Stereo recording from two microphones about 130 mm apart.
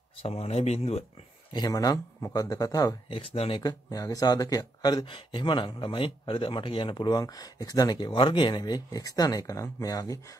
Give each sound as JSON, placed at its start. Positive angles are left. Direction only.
{"t": 0.2, "sound": "speech", "side_deg": 50}
{"t": 1.5, "sound": "speech", "side_deg": 30}
{"t": 3.1, "sound": "speech", "side_deg": 45}
{"t": 3.6, "sound": "speech", "side_deg": 30}